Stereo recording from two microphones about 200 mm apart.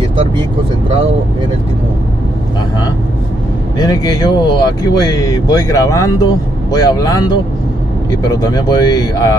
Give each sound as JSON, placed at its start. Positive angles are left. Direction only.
{"t": 3.7, "sound": "speech", "side_deg": 20}